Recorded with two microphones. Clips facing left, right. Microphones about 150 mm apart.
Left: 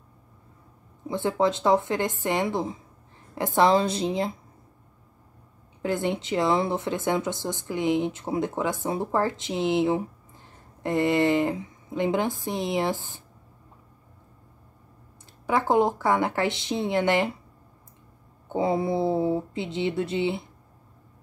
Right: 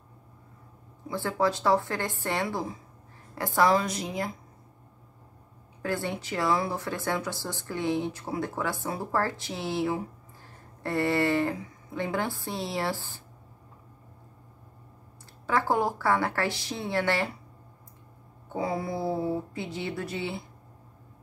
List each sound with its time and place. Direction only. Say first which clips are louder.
1.0 s speech: left 3 dB; 20° left (ahead or behind)
5.8 s speech: left 5 dB; 20° left (ahead or behind)
15.4 s speech: left 4 dB; 20° left (ahead or behind)
18.5 s speech: left 6 dB; 25° left (ahead or behind)